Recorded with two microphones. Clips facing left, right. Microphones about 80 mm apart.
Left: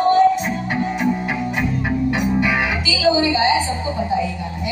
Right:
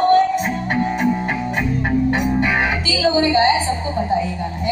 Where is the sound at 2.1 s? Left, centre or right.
Right.